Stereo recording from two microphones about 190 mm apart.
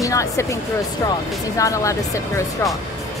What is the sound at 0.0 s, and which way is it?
Speech, 15° left (ahead or behind).